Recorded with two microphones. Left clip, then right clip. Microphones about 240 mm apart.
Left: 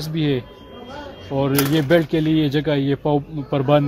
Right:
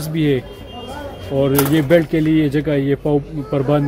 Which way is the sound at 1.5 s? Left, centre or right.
Left.